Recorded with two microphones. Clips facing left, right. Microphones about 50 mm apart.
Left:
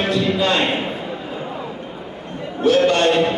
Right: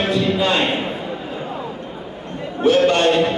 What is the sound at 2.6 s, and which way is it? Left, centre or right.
Speech, right.